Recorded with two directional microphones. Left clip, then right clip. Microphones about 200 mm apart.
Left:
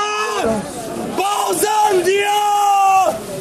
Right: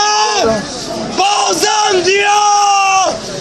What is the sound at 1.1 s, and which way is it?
Yell, centre (ahead or behind).